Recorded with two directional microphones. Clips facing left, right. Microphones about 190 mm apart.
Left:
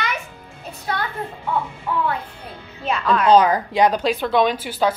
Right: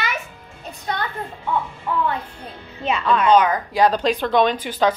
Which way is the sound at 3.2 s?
35° left (ahead or behind).